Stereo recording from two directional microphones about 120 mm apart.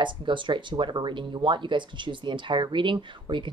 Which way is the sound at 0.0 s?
40° right (ahead or behind).